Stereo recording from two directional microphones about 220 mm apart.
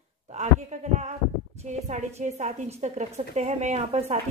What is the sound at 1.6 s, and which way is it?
A woman's voice, 30° right (ahead or behind).